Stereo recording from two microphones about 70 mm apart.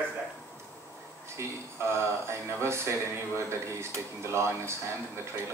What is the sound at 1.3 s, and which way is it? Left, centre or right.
Speech, right.